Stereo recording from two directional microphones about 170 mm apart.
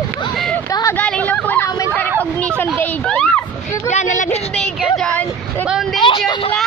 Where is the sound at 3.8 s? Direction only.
45° left (ahead or behind).